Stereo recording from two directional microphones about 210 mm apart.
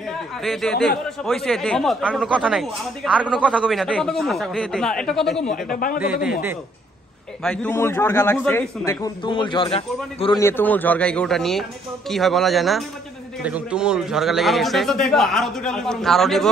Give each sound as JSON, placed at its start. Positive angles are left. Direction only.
{"t": 0.4, "sound": "speech", "side_deg": 0}
{"t": 5.5, "sound": "a man's voice", "side_deg": 40}
{"t": 7.4, "sound": "a man's voice", "side_deg": 5}
{"t": 10.4, "sound": "speech", "side_deg": 10}